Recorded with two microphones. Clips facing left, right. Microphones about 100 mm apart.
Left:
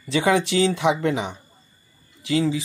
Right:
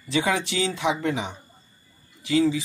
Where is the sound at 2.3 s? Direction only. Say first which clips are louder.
Right 1 dB; 40° left (ahead or behind).